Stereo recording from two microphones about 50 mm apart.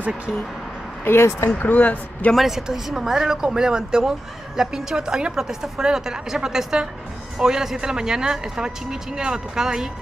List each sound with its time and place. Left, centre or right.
1.0 s speech: left
1.5 s speech: left
2.3 s speech: centre